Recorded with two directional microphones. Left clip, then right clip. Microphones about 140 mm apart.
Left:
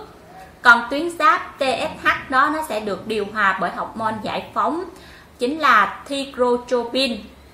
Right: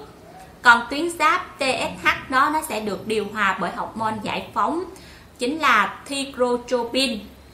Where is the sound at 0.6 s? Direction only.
25° right (ahead or behind).